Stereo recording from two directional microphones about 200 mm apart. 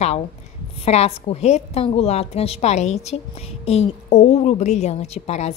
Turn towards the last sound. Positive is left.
turn(degrees=35)  # may be behind; listen again after turning